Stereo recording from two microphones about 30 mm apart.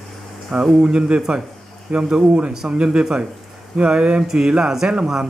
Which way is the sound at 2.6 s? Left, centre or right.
Right.